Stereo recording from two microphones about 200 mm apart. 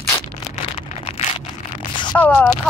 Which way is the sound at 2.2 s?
5° left (ahead or behind).